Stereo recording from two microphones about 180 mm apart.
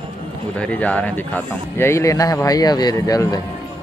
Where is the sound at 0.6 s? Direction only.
5° left (ahead or behind).